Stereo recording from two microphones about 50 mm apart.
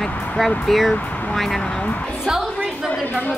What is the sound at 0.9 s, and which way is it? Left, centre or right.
Speech, left.